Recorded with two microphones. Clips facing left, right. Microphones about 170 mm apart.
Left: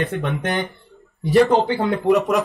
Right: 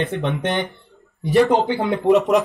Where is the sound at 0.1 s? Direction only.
20° right (ahead or behind).